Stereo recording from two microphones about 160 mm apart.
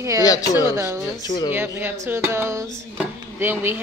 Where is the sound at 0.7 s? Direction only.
15° right (ahead or behind).